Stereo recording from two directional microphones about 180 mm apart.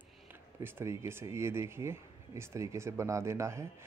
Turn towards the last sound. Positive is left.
turn(degrees=-15)  # may be behind; listen again after turning